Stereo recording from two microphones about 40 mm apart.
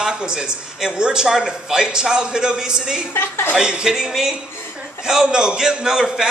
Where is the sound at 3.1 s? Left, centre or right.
Left.